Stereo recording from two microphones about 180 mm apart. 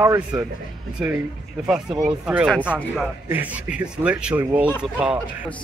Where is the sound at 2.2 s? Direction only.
5° right (ahead or behind).